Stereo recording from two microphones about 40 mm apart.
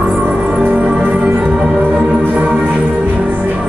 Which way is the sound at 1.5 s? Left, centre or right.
Right.